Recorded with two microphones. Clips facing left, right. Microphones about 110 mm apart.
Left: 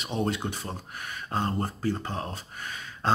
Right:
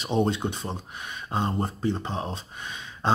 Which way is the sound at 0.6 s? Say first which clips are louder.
Right 2 dB; 20° right (ahead or behind).